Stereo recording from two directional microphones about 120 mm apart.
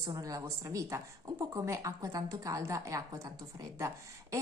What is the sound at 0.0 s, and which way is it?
A woman's voice, 30° right (ahead or behind).